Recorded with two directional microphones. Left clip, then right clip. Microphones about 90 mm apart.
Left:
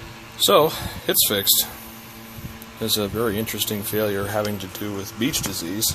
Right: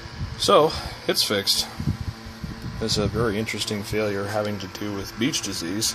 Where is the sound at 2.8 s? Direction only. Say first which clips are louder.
Left 1 dB; 10° left (ahead or behind).